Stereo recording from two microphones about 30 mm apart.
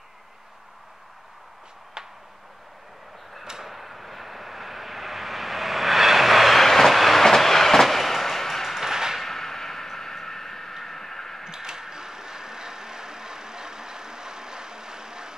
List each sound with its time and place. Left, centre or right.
2.0 s a sound: right
3.6 s vehicle: centre
6.6 s train: centre
8.6 s a sound: centre
9.2 s vehicle: centre
11.4 s vehicle: centre